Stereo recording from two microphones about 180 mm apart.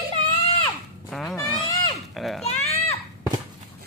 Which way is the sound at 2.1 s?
Centre (ahead or behind).